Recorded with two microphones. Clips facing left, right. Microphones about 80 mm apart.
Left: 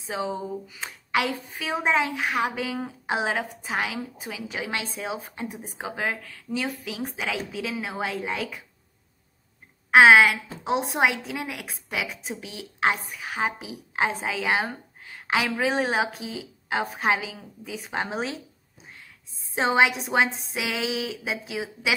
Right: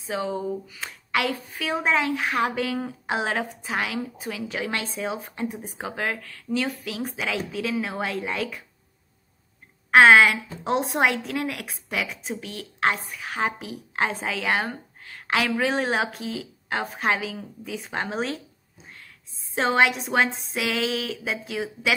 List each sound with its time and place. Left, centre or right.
0.1 s a woman's voice: centre
2.1 s a woman's voice: centre
9.8 s a woman's voice: centre
19.5 s a woman's voice: centre